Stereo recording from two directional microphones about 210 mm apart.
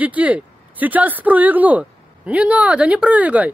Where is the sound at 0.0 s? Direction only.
5° right (ahead or behind).